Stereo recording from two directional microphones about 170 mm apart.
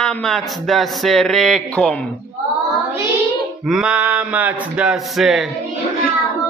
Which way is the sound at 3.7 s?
5° right (ahead or behind).